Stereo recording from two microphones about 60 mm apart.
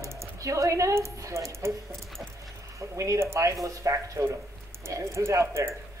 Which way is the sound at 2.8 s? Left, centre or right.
Right.